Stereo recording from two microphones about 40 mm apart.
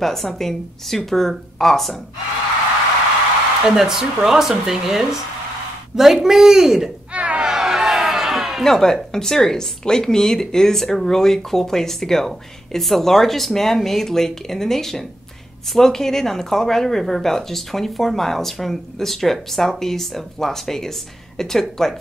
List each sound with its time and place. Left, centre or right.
0.0 s a woman's voice: centre
3.6 s speech: centre
7.1 s a sound: right
7.4 s music: centre
8.6 s speech: centre